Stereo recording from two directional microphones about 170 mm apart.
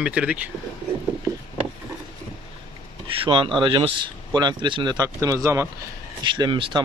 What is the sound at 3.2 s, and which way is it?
Speech, 30° right (ahead or behind).